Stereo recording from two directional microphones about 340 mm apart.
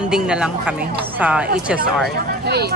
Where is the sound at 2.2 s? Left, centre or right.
Right.